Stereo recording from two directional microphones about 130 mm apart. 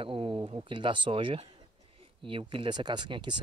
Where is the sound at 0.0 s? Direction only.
45° right (ahead or behind).